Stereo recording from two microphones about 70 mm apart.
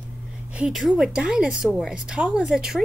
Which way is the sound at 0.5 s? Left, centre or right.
Centre.